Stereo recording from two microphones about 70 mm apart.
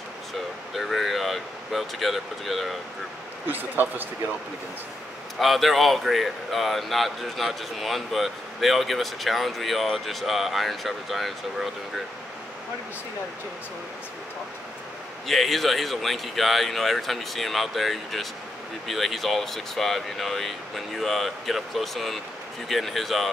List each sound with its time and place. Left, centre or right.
0.7 s speech: centre
3.4 s speech: right
5.4 s speech: centre
15.2 s speech: centre